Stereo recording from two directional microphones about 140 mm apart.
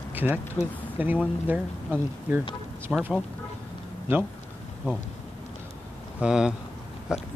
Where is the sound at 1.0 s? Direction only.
15° right (ahead or behind).